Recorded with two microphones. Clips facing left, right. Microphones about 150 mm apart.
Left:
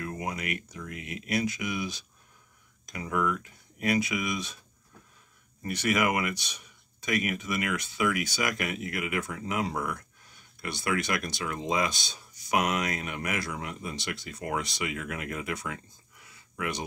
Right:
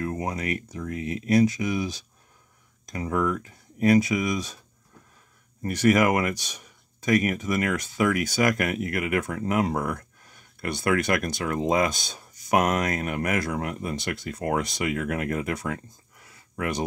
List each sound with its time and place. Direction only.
0.0 s speech: 35° right (ahead or behind)
5.6 s speech: 45° right (ahead or behind)